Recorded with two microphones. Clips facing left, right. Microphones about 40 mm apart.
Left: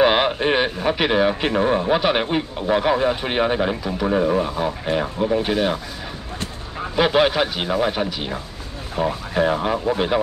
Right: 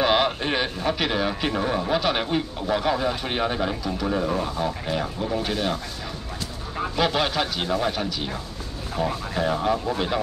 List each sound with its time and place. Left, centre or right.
0.0 s speech: left
7.0 s speech: left